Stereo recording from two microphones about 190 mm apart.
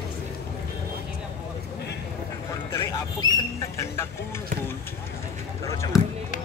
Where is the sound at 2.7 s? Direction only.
15° left (ahead or behind).